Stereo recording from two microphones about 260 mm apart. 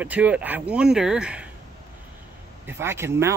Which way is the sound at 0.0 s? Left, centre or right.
Centre.